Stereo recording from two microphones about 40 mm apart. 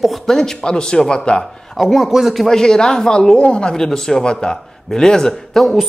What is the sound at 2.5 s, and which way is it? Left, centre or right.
Speech, centre.